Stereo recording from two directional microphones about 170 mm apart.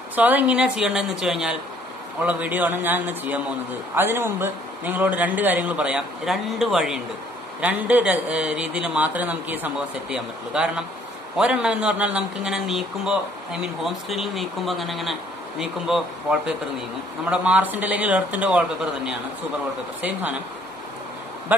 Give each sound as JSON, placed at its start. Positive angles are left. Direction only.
{"t": 0.1, "sound": "a man's voice", "side_deg": -10}
{"t": 21.5, "sound": "a man's voice", "side_deg": -10}